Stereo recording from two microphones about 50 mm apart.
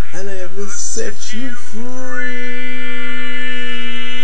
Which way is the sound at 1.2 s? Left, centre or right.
Centre.